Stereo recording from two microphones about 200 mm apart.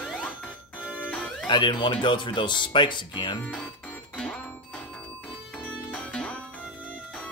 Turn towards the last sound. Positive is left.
turn(degrees=5)  # may be behind; listen again after turning